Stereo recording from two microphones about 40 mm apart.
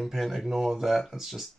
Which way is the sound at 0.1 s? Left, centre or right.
Centre.